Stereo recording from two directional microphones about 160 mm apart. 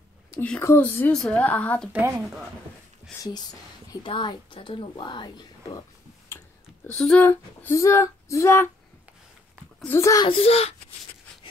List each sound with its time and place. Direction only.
0.4 s speech: 15° left (ahead or behind)
1.9 s a woman's voice: 10° right (ahead or behind)
4.0 s a woman's voice: 30° left (ahead or behind)
6.9 s speech: 5° left (ahead or behind)
7.2 s speech: 15° left (ahead or behind)
9.8 s a woman's voice: 20° left (ahead or behind)
10.2 s speech: 35° left (ahead or behind)